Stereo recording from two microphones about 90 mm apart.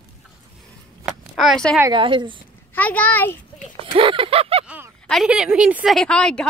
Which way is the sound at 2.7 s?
15° left (ahead or behind).